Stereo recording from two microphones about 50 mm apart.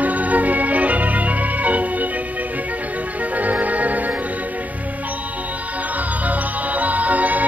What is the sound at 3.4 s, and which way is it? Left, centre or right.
Music, right.